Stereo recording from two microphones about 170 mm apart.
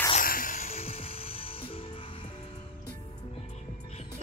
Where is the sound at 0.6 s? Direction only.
35° left (ahead or behind).